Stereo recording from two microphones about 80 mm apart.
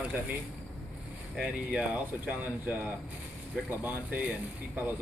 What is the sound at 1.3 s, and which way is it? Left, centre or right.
Speech, centre.